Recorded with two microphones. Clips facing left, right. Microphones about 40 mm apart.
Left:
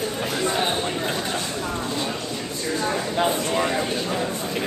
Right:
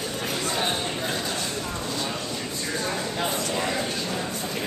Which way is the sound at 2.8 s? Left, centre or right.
Left.